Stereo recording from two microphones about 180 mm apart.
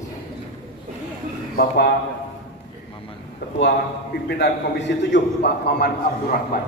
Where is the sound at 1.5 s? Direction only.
55° left (ahead or behind).